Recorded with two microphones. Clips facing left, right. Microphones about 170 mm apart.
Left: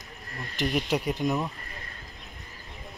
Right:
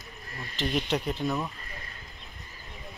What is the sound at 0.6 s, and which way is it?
Speech, 10° left (ahead or behind).